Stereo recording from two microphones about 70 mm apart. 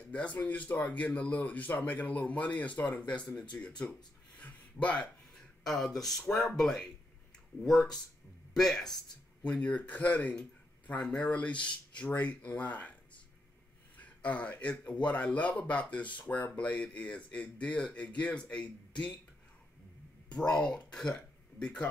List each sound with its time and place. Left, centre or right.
0.1 s speech: left
4.4 s a sound: left
5.3 s a sound: centre
6.0 s speech: centre
9.4 s speech: centre
13.9 s speech: left
20.2 s speech: centre